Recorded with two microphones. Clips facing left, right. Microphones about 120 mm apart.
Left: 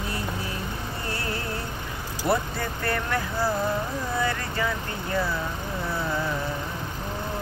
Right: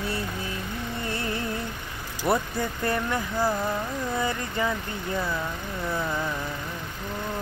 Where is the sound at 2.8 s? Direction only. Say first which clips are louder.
Left 1 dB; 15° right (ahead or behind).